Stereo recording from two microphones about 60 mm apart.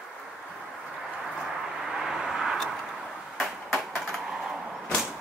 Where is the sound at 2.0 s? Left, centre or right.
Centre.